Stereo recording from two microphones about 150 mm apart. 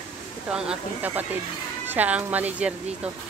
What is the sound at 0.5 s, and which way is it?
Speech, 10° right (ahead or behind).